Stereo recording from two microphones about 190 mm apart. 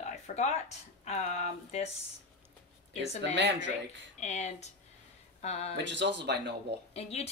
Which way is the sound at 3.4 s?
70° right (ahead or behind).